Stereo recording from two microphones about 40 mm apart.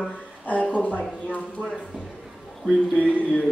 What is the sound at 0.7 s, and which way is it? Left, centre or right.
Speech, left.